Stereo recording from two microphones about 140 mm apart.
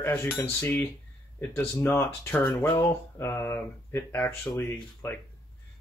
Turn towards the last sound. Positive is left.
turn(degrees=15)  # may be behind; listen again after turning